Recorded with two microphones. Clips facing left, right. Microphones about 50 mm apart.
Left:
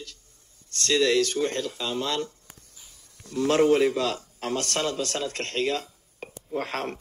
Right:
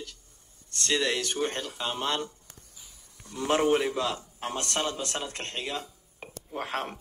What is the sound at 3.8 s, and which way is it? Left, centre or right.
A man's voice, left.